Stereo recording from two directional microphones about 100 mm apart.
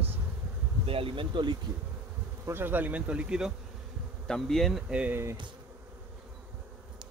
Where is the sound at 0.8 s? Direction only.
65° right (ahead or behind).